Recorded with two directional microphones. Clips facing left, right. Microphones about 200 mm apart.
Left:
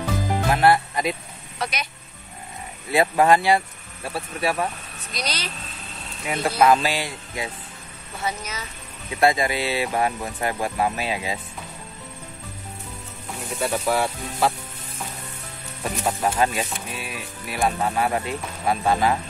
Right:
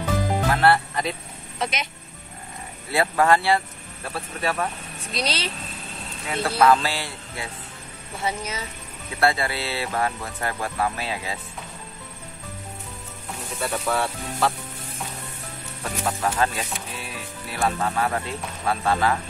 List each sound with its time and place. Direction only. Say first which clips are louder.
0.5 s speech: left 3 dB; 15° left (ahead or behind)
1.6 s speech: right 1 dB; 20° right (ahead or behind)
2.9 s speech: left 2 dB; 15° left (ahead or behind)
5.1 s speech: right 3 dB; 30° right (ahead or behind)
6.2 s speech: left 1 dB; 15° left (ahead or behind)
8.3 s speech: right 2 dB; 30° right (ahead or behind)
9.2 s speech: left 3 dB; 15° left (ahead or behind)
13.6 s speech: left 3 dB; 10° left (ahead or behind)
15.8 s speech: left 2 dB; 15° left (ahead or behind)